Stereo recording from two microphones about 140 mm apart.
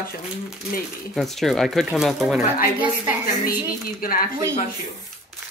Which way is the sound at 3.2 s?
90° left.